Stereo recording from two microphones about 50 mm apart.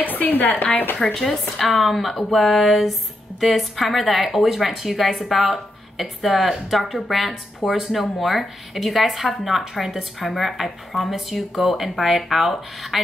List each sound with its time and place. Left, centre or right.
0.0 s a woman's voice: left
0.9 s a woman's voice: centre